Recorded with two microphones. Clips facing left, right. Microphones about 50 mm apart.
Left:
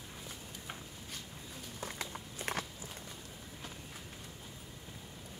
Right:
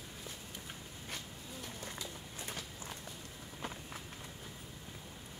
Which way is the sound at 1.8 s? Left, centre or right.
Left.